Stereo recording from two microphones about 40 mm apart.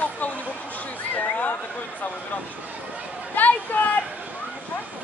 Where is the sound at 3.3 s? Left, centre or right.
Left.